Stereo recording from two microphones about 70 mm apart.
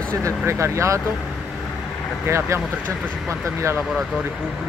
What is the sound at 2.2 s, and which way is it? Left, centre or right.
Speech, right.